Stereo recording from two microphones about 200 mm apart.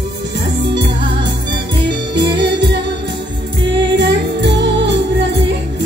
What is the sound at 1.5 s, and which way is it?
Music, 60° right (ahead or behind).